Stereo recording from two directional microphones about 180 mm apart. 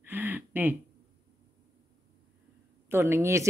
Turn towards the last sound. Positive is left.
turn(degrees=-15)  # may be behind; listen again after turning